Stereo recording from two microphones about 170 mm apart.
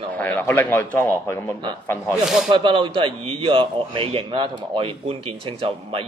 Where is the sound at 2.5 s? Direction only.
30° right (ahead or behind).